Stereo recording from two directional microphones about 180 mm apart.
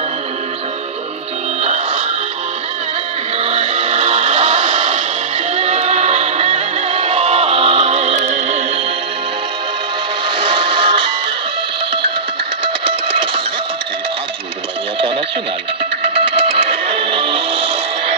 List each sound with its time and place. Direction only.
3.3 s music: 35° right (ahead or behind)
10.4 s music: 30° right (ahead or behind)
12.6 s a sound: 30° right (ahead or behind)
16.3 s music: 30° right (ahead or behind)